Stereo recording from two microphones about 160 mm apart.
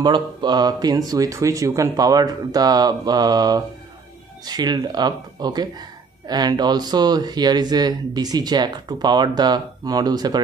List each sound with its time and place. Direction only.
0.0 s speech: 30° right (ahead or behind)